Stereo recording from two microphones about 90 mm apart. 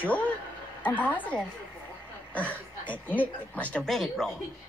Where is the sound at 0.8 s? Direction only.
20° left (ahead or behind).